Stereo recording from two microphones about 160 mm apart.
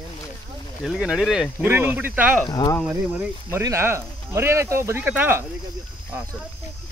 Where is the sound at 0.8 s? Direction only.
Centre (ahead or behind).